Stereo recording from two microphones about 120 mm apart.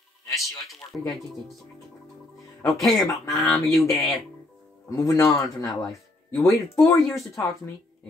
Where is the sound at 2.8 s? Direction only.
Centre (ahead or behind).